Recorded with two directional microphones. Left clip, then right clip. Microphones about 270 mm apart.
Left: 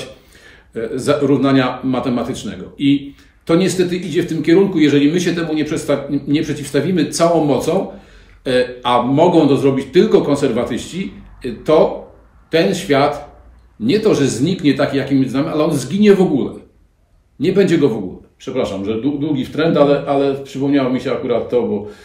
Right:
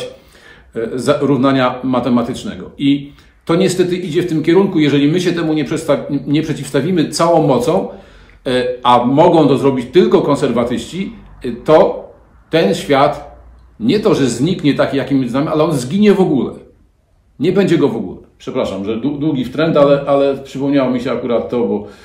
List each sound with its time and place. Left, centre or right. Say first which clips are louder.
0.5 s a man's voice: right 2 dB; centre